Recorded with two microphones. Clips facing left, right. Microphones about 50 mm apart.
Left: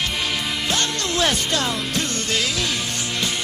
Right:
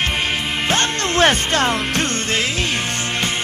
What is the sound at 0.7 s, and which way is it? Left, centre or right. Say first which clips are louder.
Speech: right 6 dB; right.